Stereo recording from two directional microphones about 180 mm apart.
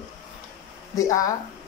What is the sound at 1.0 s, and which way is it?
Speech, 20° left (ahead or behind).